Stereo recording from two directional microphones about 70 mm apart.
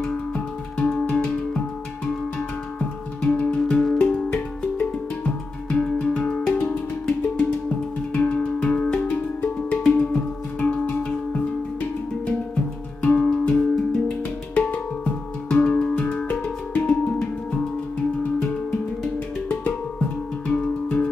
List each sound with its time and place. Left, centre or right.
0.7 s music: centre
3.2 s music: centre
13.0 s music: centre
16.3 s music: left
20.4 s music: centre